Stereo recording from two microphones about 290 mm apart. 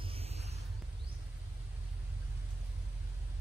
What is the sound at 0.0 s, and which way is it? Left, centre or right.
Music, centre.